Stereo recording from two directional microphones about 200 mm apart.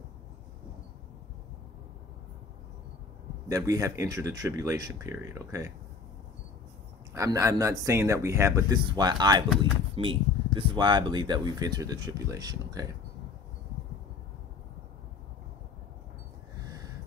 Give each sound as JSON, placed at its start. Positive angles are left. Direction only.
{"t": 3.4, "sound": "speech", "side_deg": -15}
{"t": 7.2, "sound": "speech", "side_deg": -15}
{"t": 16.5, "sound": "gasp", "side_deg": -15}